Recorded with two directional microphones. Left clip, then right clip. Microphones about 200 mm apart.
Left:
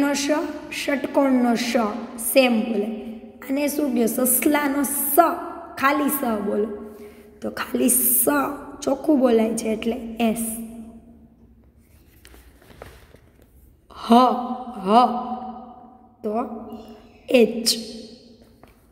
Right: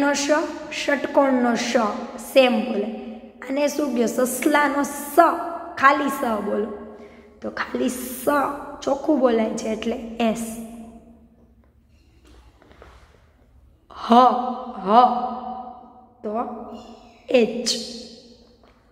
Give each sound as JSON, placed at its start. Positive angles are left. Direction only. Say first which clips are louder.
{"t": 0.0, "sound": "a woman's voice", "louder": "right 2 dB", "side_deg": 20}
{"t": 13.8, "sound": "a sound", "louder": "right 2 dB", "side_deg": 25}
{"t": 14.8, "sound": "a woman's voice", "louder": "right 1 dB", "side_deg": 30}
{"t": 16.2, "sound": "a woman's voice", "louder": "left 1 dB", "side_deg": 30}